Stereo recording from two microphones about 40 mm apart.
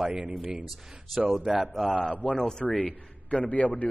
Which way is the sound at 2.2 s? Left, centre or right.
Left.